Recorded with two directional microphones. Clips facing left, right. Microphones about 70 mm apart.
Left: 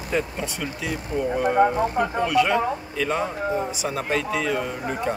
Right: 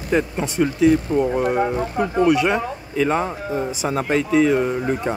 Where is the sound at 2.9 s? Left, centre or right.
Right.